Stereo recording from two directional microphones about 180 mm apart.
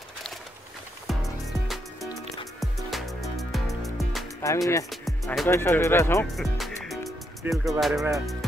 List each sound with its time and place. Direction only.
1.0 s music: centre (ahead or behind)
4.4 s speech: 15° left (ahead or behind)
4.8 s music: centre (ahead or behind)
5.5 s speech: 15° left (ahead or behind)
6.3 s music: centre (ahead or behind)